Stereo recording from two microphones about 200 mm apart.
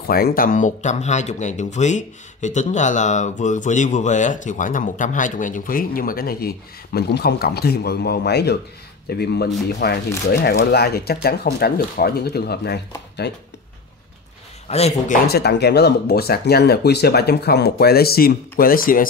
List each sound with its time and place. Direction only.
0.1 s speech: 45° left (ahead or behind)
14.7 s speech: 30° left (ahead or behind)
15.2 s speech: 55° left (ahead or behind)